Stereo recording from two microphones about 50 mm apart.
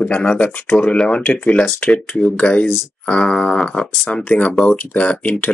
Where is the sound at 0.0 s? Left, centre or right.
Left.